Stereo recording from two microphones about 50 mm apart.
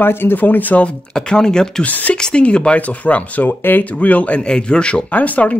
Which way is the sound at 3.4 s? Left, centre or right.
Left.